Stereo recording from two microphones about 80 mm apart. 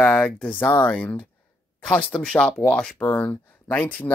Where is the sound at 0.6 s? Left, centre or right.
Left.